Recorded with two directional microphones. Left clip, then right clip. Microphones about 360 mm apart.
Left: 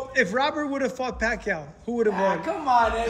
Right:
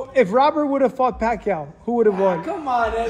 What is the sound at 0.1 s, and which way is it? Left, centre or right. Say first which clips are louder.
Speech: right 7 dB; centre.